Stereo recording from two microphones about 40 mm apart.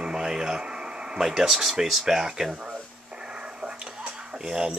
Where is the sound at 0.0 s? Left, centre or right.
Centre.